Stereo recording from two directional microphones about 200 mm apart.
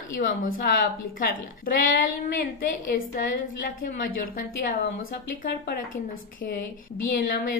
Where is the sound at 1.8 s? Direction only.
45° left (ahead or behind).